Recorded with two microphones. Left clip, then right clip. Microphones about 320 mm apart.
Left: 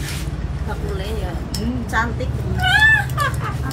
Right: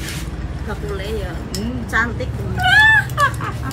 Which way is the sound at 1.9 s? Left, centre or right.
Centre.